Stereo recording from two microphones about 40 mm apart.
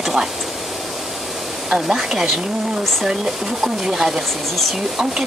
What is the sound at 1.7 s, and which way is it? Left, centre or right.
Speech, centre.